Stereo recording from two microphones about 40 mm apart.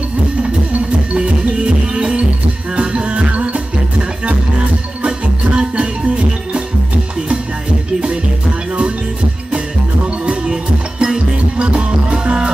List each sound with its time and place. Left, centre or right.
0.4 s music: right
5.0 s music: right
10.2 s music: right